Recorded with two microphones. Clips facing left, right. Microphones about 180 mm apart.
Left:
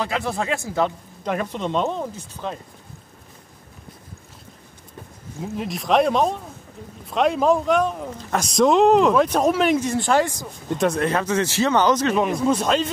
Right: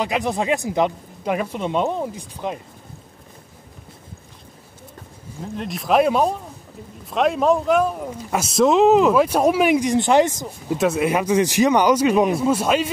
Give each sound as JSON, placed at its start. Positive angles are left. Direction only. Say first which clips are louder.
{"t": 0.0, "sound": "speech", "louder": "right 3 dB", "side_deg": -15}
{"t": 5.4, "sound": "speech", "louder": "left 1 dB", "side_deg": 0}
{"t": 10.7, "sound": "speech", "louder": "right 2 dB", "side_deg": -5}